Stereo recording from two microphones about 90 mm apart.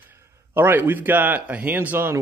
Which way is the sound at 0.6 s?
25° right (ahead or behind).